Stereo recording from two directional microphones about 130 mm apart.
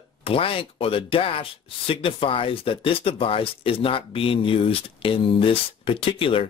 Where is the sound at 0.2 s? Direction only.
45° left (ahead or behind).